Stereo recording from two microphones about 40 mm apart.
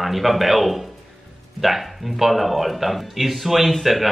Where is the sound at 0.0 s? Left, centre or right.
Centre.